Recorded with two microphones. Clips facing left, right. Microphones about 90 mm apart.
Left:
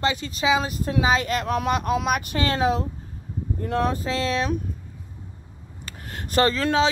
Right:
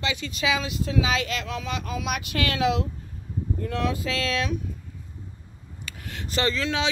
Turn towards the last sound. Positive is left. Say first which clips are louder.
# left 5 dB
turn(degrees=40)  # may be behind; listen again after turning